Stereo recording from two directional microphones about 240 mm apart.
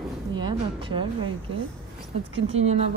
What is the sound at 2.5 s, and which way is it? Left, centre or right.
Speech, right.